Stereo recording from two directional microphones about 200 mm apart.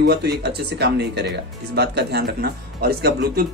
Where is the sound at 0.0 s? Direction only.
55° right (ahead or behind).